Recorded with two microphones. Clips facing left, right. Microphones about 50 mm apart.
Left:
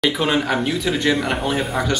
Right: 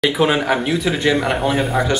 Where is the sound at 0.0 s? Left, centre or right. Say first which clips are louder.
Right 3 dB; centre.